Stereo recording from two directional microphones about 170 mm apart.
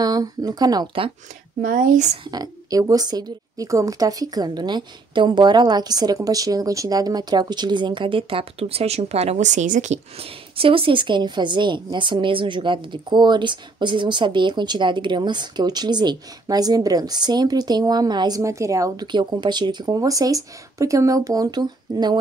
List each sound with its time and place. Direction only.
0.0 s speech: 20° right (ahead or behind)
1.6 s speech: 50° right (ahead or behind)
2.2 s speech: 25° right (ahead or behind)